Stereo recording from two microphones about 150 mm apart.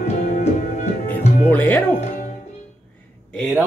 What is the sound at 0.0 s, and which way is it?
Music, 50° left (ahead or behind).